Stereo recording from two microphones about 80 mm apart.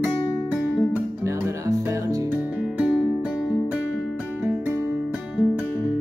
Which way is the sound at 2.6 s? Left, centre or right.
Centre.